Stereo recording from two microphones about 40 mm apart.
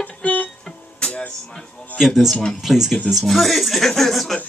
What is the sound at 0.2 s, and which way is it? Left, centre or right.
Music, left.